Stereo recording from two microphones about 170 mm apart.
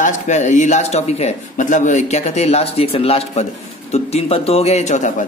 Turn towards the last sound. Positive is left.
turn(degrees=45)  # may be behind; listen again after turning